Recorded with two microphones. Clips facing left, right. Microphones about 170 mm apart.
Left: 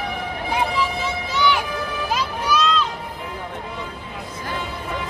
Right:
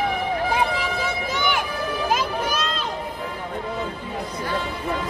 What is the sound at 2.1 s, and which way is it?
Music, 50° right (ahead or behind).